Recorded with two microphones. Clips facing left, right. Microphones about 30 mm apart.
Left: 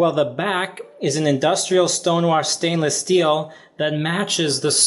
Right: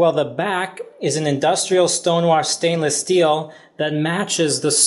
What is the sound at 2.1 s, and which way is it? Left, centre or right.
Speech, centre.